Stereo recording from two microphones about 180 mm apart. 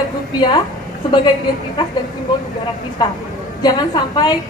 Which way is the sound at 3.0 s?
25° left (ahead or behind).